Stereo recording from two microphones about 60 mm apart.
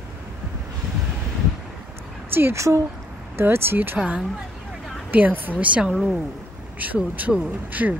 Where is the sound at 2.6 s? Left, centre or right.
Right.